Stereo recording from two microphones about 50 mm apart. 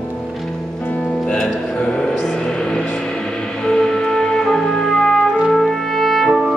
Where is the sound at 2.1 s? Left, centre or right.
Centre.